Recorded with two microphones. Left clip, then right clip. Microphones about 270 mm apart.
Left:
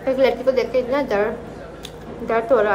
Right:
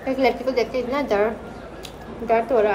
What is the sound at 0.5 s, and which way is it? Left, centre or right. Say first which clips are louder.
Speech: left 3 dB; centre.